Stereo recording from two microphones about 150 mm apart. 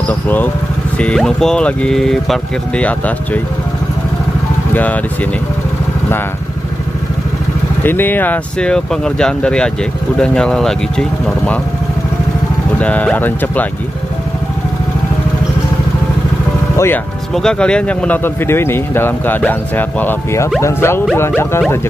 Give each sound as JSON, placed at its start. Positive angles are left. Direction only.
{"t": 0.9, "sound": "speech", "side_deg": 5}
{"t": 7.8, "sound": "speech", "side_deg": 15}
{"t": 12.7, "sound": "speech", "side_deg": 10}
{"t": 16.7, "sound": "speech", "side_deg": 15}
{"t": 17.4, "sound": "speech", "side_deg": 5}